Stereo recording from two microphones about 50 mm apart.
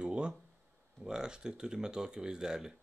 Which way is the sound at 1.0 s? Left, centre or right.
Centre.